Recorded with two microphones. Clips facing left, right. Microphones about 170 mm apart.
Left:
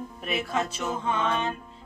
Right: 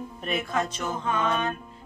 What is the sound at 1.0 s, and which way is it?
Speech, 25° left (ahead or behind).